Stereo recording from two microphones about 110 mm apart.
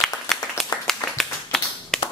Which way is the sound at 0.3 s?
5° left (ahead or behind).